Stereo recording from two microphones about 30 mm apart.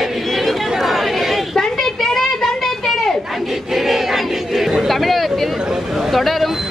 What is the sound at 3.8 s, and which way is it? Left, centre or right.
Battle cry, centre.